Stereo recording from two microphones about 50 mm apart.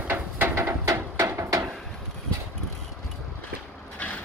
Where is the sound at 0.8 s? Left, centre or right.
Right.